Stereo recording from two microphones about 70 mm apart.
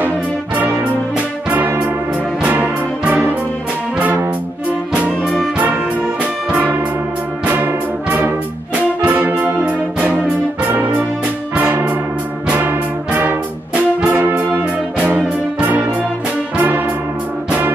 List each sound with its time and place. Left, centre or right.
1.1 s music: right
4.9 s music: centre
6.5 s music: right
7.4 s brass instrument: right
9.0 s music: right
11.5 s music: right
12.4 s brass instrument: right
15.0 s music: right
16.5 s brass instrument: right